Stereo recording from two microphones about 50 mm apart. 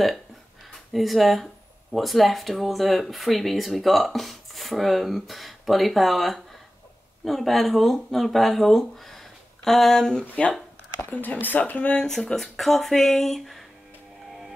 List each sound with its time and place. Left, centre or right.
0.9 s speech: centre
11.0 s speech: left
12.0 s speech: centre